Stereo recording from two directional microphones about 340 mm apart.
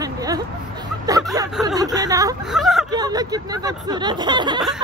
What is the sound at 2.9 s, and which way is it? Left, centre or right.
Speech, centre.